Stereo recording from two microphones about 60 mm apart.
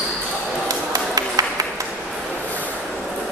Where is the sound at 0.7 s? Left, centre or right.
Right.